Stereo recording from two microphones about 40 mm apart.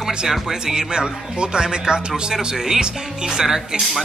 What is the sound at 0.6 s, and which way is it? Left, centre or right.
Speech, centre.